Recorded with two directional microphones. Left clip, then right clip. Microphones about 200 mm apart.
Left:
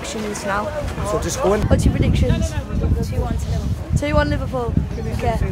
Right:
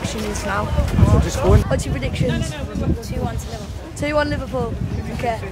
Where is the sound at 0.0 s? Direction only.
Centre (ahead or behind).